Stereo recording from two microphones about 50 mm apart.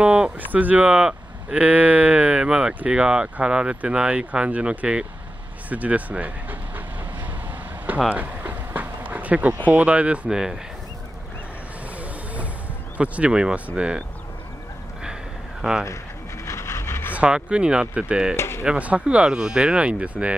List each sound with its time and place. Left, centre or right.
0.0 s speech: centre
0.4 s speech: right
5.7 s speech: right
8.1 s a sound: right
9.0 s speech: right
10.3 s speech: centre
12.9 s speech: right
15.6 s speech: centre
16.4 s pant: left
17.1 s speech: right
18.3 s speech: left
18.6 s speech: right